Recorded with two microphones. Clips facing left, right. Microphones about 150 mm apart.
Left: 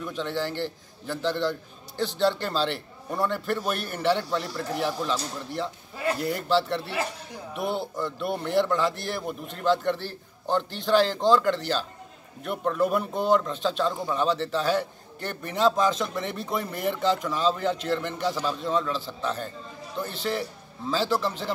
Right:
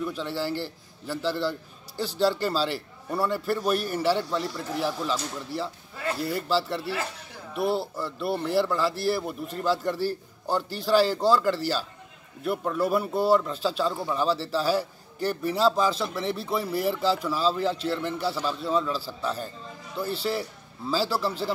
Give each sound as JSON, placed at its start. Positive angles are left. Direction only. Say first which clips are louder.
{"t": 0.0, "sound": "a man's voice", "louder": "even", "side_deg": -5}